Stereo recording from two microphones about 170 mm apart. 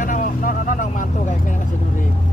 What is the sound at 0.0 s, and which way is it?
Vehicle, 50° left (ahead or behind).